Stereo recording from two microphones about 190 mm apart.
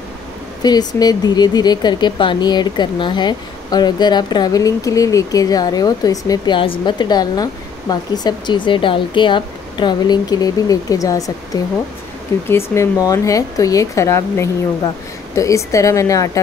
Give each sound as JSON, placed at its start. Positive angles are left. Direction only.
{"t": 0.6, "sound": "speech", "side_deg": 20}